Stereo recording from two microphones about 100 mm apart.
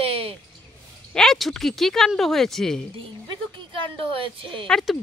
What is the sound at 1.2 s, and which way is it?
Speech, centre (ahead or behind).